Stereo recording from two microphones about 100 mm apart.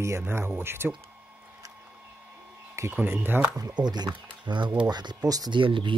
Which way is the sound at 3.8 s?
45° right (ahead or behind).